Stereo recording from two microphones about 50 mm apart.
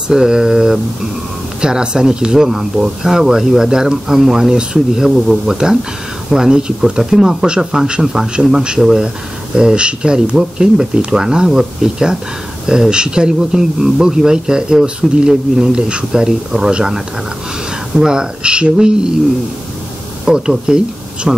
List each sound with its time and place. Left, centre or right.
0.1 s a man's voice: centre
20.2 s speech: centre